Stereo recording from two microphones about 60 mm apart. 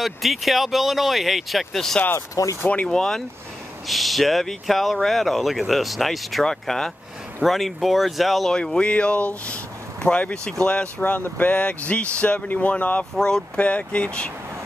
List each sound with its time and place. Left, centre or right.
0.0 s speech: centre
2.1 s speech: left
2.9 s speech: centre
8.5 s speech: centre
13.1 s speech: centre